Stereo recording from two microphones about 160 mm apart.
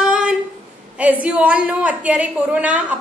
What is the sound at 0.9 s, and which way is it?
A woman's voice, 10° right (ahead or behind).